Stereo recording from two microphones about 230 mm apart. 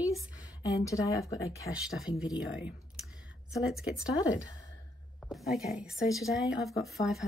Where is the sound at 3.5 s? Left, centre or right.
Centre.